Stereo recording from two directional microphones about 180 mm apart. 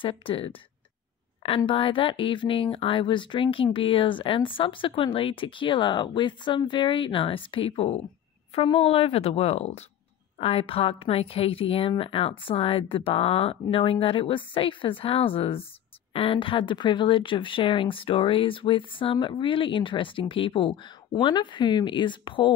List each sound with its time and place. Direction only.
0.0 s speech: 30° left (ahead or behind)
1.6 s speech: 30° left (ahead or behind)